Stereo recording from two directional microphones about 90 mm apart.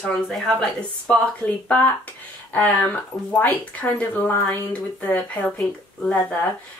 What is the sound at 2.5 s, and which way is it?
Speech, 15° left (ahead or behind).